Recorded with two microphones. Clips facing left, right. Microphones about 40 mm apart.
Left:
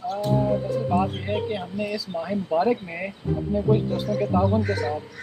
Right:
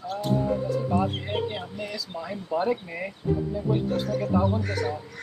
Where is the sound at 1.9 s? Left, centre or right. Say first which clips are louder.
Left 6 dB; centre.